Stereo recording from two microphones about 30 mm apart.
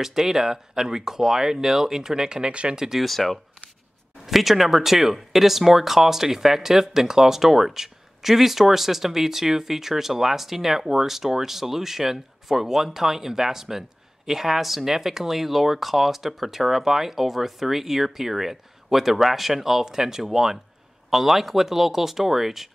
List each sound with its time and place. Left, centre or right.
0.0 s speech: centre
3.0 s speech: centre
4.3 s speech: centre